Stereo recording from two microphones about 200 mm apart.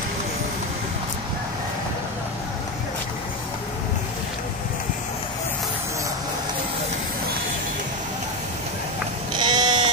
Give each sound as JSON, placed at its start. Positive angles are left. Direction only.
{"t": 9.4, "sound": "sheep", "side_deg": -20}